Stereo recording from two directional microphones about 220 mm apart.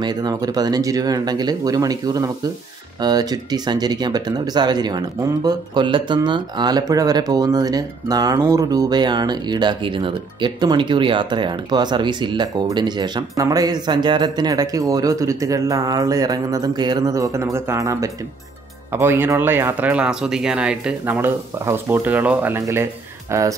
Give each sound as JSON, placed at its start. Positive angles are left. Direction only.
{"t": 0.0, "sound": "speech", "side_deg": -20}